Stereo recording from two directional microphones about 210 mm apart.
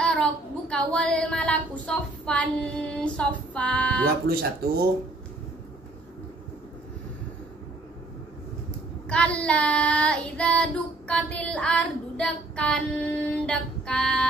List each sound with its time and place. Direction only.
0.0 s speech: 5° left (ahead or behind)
4.6 s speech: 45° right (ahead or behind)
9.1 s child singing: 5° left (ahead or behind)